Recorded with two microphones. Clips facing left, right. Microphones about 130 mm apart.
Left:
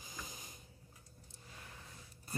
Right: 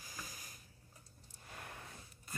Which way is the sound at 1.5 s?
65° right (ahead or behind).